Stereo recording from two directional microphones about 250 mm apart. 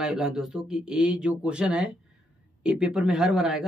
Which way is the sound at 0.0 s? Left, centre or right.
Centre.